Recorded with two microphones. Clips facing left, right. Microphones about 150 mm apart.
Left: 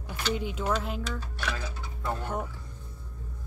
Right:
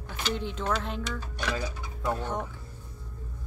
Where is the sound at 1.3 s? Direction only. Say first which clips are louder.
Right 3 dB; 15° right (ahead or behind).